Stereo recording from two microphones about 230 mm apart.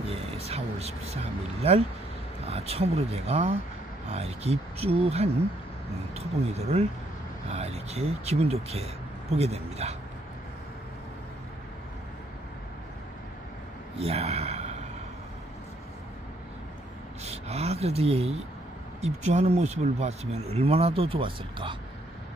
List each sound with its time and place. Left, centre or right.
0.0 s a sound: right
2.4 s speech: right
13.9 s a man's voice: right
17.2 s speech: right